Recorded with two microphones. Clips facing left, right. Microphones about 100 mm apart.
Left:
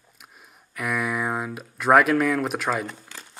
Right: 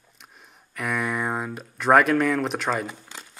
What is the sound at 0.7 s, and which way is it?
Speech, centre (ahead or behind).